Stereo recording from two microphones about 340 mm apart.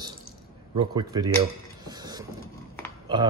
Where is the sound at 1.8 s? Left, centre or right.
Centre.